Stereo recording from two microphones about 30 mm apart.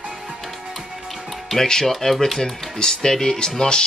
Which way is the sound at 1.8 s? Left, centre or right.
Centre.